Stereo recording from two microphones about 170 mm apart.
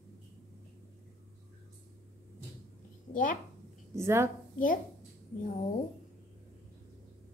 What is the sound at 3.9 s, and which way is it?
Speech, 15° right (ahead or behind).